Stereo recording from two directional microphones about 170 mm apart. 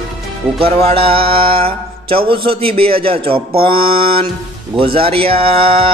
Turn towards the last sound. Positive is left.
turn(degrees=-35)  # may be behind; listen again after turning